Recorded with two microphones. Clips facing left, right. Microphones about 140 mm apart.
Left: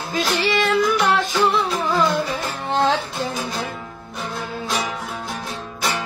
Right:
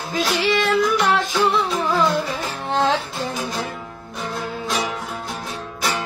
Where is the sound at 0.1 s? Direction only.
Centre (ahead or behind).